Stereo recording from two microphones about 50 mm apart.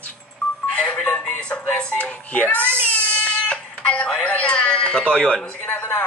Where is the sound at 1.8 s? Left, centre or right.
Left.